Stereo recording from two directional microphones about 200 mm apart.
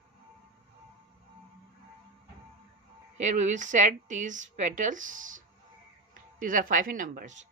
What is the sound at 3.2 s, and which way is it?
Speech, 35° right (ahead or behind).